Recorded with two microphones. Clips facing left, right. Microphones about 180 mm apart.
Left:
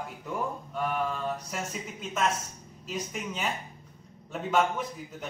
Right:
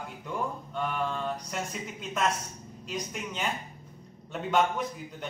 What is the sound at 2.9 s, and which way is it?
A man's voice, centre (ahead or behind).